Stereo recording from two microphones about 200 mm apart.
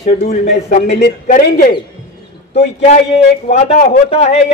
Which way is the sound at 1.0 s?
45° left (ahead or behind).